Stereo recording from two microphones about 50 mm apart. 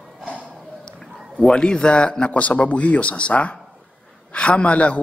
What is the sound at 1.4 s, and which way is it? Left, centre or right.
Speech, centre.